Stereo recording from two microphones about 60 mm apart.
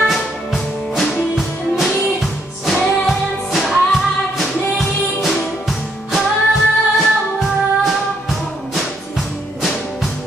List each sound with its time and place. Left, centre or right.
0.1 s music: centre